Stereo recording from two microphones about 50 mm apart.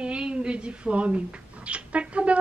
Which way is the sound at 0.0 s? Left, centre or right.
Right.